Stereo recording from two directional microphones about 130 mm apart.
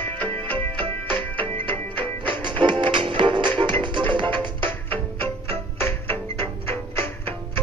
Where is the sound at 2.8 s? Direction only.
40° right (ahead or behind).